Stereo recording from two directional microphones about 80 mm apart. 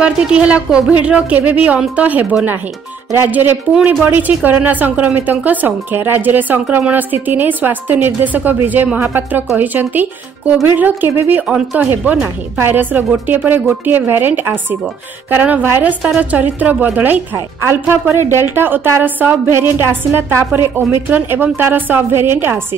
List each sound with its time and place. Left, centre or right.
0.0 s a woman's voice: centre
11.4 s a woman's voice: centre; by 22.6 s right